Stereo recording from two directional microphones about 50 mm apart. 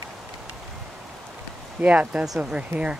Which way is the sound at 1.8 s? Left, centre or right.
Right.